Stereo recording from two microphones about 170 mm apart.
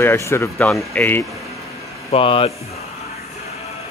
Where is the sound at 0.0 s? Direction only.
15° left (ahead or behind).